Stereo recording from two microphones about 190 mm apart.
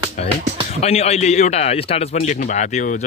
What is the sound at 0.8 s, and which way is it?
A man's voice, 35° left (ahead or behind).